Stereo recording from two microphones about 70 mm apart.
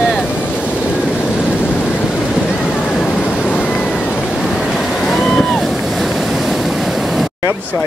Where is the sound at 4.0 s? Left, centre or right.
Left.